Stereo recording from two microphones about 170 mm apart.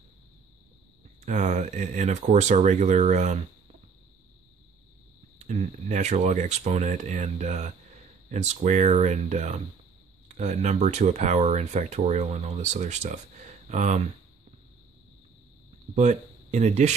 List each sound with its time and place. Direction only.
1.2 s speech: 45° right (ahead or behind)
5.5 s speech: 45° right (ahead or behind)
15.9 s speech: 45° right (ahead or behind)